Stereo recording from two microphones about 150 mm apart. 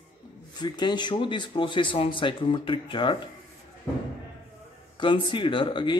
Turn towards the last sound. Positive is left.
turn(degrees=30)  # may be behind; listen again after turning